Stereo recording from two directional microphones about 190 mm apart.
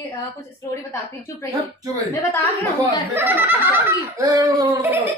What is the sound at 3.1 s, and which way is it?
Speech, 10° right (ahead or behind).